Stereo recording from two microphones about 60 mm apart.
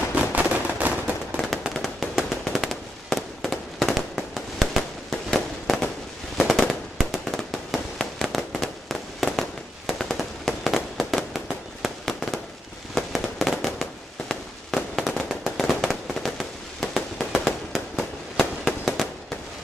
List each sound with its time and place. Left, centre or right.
0.1 s gunshot: right
1.4 s fireworks: centre
15.0 s fireworks: centre